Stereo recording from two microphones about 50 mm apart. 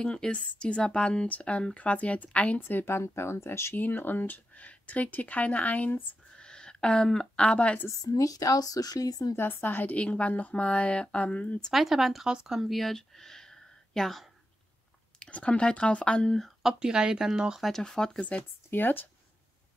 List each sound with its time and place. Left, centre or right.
0.0 s speech: centre
2.7 s speech: left
3.7 s speech: left
6.3 s a sound: centre
9.4 s speech: left
9.9 s speech: left
11.7 s speech: centre
15.2 s speech: left
16.6 s speech: centre
17.6 s speech: centre
18.7 s speech: left